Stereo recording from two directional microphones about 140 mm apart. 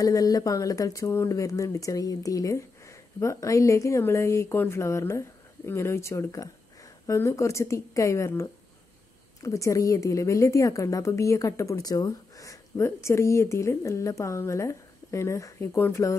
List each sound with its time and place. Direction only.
0.0 s a woman's voice: 25° left (ahead or behind)